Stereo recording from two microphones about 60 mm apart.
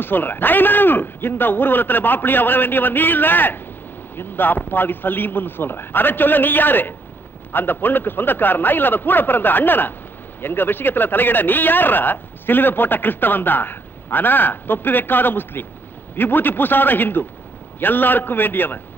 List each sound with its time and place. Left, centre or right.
0.0 s speech: left